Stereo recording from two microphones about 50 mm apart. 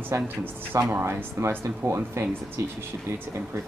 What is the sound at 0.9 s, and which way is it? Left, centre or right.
Speech, right.